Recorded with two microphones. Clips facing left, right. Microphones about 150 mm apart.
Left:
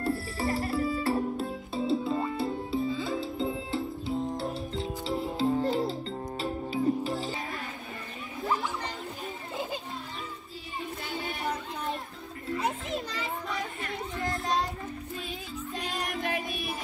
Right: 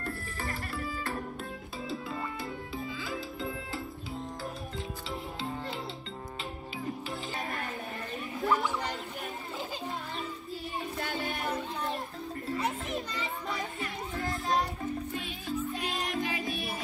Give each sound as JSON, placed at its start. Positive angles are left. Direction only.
{"t": 0.4, "sound": "music", "side_deg": 35}
{"t": 15.9, "sound": "music", "side_deg": 60}